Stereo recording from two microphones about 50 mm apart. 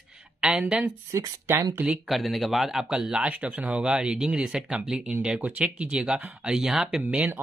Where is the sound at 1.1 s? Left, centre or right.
Right.